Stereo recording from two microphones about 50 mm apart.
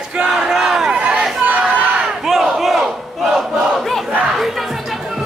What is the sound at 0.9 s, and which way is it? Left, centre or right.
Crowd, right.